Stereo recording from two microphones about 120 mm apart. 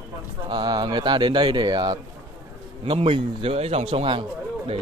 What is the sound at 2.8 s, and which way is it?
A man's voice, 45° right (ahead or behind).